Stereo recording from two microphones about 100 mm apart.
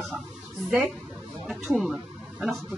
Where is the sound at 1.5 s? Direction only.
Centre (ahead or behind).